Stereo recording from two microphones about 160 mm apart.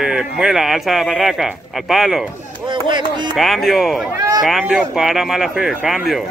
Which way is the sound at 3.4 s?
Centre (ahead or behind).